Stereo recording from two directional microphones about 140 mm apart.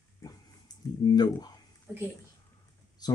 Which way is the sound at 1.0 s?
30° left (ahead or behind).